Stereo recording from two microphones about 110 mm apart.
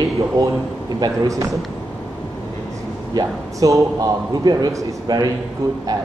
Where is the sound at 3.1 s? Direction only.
35° right (ahead or behind).